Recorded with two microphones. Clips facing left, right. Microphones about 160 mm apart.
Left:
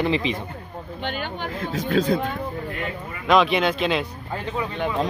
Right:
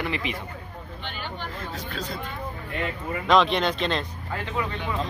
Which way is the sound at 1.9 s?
55° left (ahead or behind).